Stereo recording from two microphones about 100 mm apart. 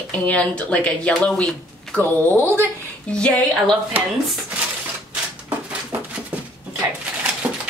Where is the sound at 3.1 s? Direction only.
10° left (ahead or behind).